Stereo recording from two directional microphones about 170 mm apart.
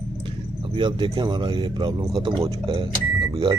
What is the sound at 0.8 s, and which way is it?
Speech, 30° right (ahead or behind).